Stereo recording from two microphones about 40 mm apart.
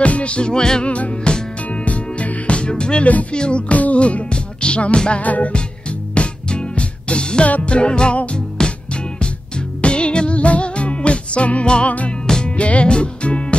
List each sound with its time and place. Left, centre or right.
0.0 s music: left
0.8 s music: left
5.2 s music: left
6.1 s music: left
9.8 s music: left